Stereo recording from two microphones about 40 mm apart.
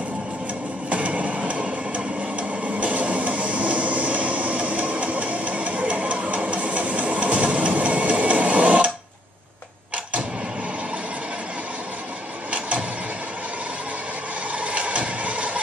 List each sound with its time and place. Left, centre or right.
0.8 s train: right
12.4 s vehicle: right
14.6 s vehicle: right